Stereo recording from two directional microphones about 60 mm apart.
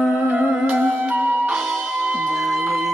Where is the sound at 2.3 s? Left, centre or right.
Centre.